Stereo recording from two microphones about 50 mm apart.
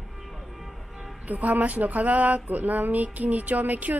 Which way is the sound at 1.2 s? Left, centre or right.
Right.